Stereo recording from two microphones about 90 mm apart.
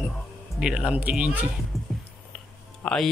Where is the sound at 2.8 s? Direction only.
5° left (ahead or behind).